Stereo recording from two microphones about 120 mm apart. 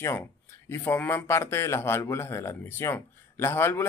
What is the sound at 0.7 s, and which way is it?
Speech, 20° left (ahead or behind).